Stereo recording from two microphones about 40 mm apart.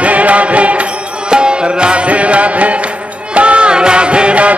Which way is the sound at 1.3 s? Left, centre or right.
Right.